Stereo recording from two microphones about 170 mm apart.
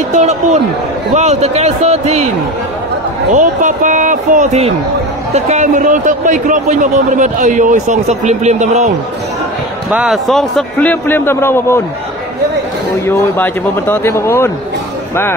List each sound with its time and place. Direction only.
0.1 s a man's voice: 40° right (ahead or behind)
3.3 s a man's voice: 50° right (ahead or behind)
9.8 s a man's voice: centre (ahead or behind); by 11.8 s 15° left (ahead or behind)
13.0 s a man's voice: 15° left (ahead or behind)